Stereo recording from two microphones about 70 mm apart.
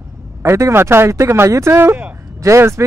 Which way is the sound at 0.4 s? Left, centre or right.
Right.